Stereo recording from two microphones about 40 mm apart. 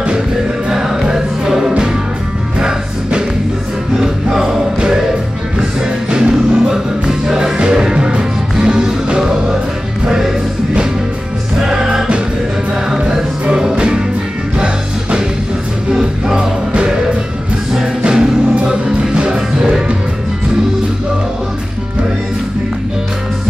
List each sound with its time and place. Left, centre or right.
0.7 s music: centre
11.6 s music: centre
18.0 s music: centre